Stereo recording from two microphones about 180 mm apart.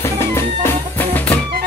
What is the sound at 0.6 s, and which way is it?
Music, 10° left (ahead or behind).